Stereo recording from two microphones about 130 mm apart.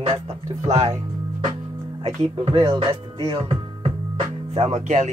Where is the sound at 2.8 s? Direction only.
40° right (ahead or behind).